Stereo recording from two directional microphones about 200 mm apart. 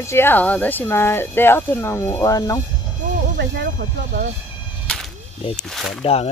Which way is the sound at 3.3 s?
55° right (ahead or behind).